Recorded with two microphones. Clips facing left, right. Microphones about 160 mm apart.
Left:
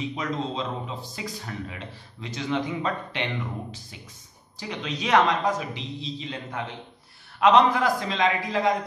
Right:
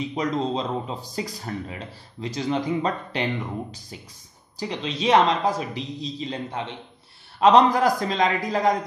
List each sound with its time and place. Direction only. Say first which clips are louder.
0.1 s a man's voice: right 5 dB; 35° right (ahead or behind)
4.6 s a man's voice: right 3 dB; 30° right (ahead or behind)